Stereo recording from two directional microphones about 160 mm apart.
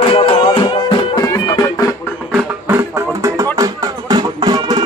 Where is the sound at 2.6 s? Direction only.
15° right (ahead or behind).